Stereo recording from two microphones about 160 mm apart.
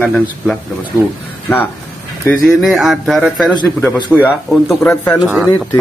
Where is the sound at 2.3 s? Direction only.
Centre (ahead or behind); by 5.1 s 15° left (ahead or behind).